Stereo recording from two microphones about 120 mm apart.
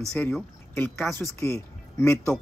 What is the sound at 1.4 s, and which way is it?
Speech, 25° left (ahead or behind).